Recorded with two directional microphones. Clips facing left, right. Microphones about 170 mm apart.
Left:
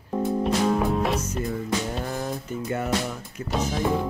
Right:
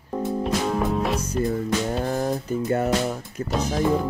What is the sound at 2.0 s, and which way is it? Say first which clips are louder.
Music: right 5 dB; 40° right (ahead or behind).